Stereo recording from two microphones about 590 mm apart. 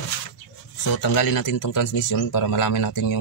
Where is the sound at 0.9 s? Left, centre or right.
Left.